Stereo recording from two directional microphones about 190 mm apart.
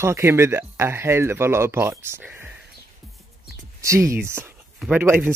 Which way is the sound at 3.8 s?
15° right (ahead or behind).